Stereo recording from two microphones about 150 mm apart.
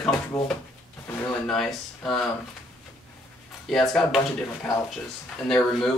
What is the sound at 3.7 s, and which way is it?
Speech, centre (ahead or behind).